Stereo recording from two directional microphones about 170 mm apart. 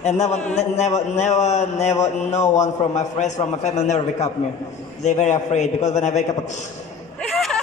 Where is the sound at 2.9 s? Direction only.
45° left (ahead or behind).